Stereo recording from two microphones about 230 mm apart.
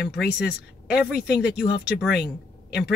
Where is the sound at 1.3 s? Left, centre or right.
Left.